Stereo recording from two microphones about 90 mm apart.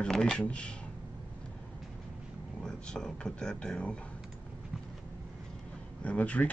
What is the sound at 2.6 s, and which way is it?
Speech, 10° left (ahead or behind).